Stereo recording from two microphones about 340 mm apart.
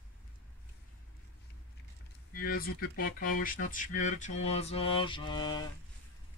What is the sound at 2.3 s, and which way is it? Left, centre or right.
Speech, left.